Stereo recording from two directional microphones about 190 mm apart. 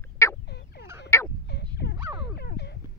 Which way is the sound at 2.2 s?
60° left (ahead or behind).